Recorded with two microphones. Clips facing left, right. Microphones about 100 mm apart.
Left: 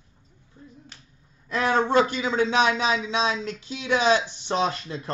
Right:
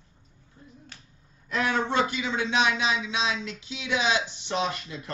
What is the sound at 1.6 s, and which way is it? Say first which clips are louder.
Speech: left 6 dB; 35° left (ahead or behind).